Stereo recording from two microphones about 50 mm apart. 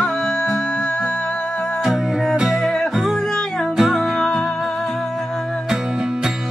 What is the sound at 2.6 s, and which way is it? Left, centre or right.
Music, centre.